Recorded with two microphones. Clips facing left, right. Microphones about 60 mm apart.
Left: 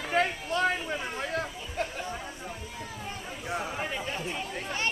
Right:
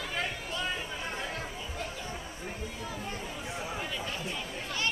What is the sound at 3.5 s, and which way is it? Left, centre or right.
Chatter, left.